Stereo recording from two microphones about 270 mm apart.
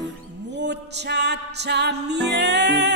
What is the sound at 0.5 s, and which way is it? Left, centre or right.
Music, right.